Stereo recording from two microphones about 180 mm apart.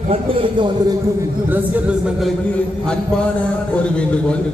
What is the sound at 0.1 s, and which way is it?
Speech, 30° right (ahead or behind).